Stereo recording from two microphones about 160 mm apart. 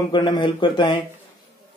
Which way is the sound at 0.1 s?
25° left (ahead or behind).